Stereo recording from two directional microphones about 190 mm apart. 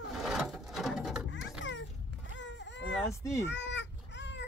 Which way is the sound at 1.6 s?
75° left (ahead or behind).